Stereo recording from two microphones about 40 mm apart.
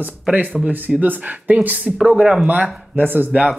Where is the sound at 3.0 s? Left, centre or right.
Right.